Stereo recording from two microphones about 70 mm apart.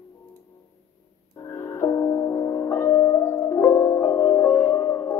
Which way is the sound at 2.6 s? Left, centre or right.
Left.